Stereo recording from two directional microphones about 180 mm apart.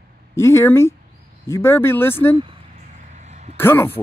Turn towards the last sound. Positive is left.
turn(degrees=10)  # may be behind; listen again after turning